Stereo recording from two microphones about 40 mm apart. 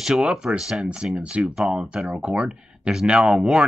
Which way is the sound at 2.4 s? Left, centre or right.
Centre.